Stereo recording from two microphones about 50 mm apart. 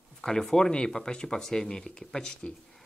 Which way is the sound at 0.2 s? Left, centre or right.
Centre.